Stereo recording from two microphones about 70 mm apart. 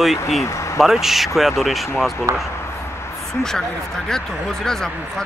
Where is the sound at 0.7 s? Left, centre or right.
Centre.